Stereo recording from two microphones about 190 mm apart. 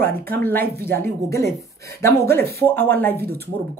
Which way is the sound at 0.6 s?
55° right (ahead or behind).